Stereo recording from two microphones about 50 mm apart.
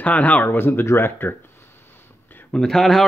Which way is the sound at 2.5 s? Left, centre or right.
Centre.